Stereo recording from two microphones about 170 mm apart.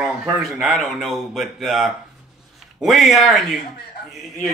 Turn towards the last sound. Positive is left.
turn(degrees=0)  # may be behind; listen again after turning